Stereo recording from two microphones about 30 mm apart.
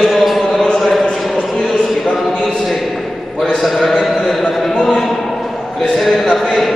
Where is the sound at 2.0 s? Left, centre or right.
Centre.